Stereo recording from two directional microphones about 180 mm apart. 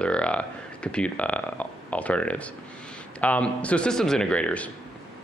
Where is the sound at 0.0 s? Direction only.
5° left (ahead or behind).